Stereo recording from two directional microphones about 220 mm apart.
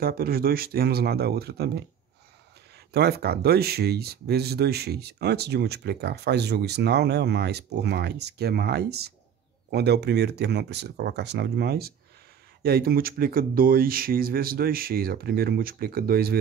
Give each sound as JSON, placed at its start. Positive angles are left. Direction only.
{"t": 0.0, "sound": "speech", "side_deg": -40}
{"t": 2.9, "sound": "speech", "side_deg": -45}